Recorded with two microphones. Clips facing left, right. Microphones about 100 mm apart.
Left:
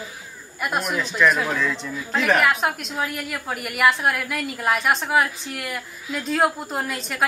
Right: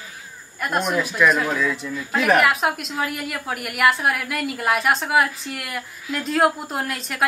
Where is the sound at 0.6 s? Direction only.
5° left (ahead or behind).